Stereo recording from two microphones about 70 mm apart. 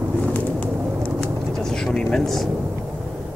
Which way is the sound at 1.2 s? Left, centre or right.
Centre.